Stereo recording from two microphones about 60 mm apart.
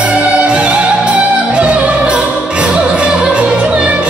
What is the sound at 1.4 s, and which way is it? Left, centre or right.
Music, centre.